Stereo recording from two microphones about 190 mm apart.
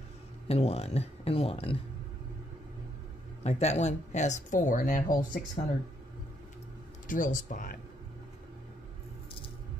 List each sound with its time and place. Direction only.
0.5 s speech: 30° left (ahead or behind)
3.4 s speech: 35° left (ahead or behind)
7.1 s speech: 45° left (ahead or behind)